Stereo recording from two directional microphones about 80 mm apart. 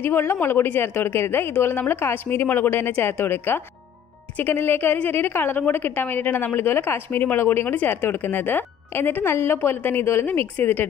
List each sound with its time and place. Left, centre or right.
0.0 s a woman's voice: left